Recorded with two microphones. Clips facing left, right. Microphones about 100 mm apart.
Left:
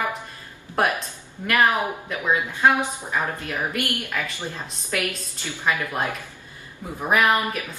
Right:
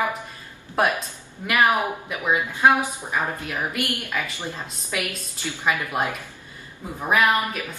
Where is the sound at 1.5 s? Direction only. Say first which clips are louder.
Even; 15° right (ahead or behind).